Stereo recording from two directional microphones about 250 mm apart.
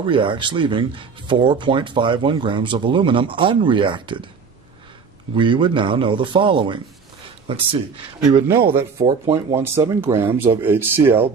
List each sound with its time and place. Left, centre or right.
0.0 s speech: centre
5.3 s speech: centre